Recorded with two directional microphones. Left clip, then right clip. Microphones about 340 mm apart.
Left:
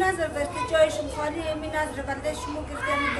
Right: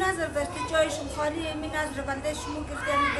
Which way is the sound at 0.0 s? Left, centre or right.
Centre.